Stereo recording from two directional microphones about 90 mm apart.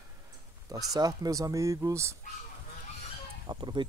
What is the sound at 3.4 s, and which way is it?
Speech, 55° right (ahead or behind).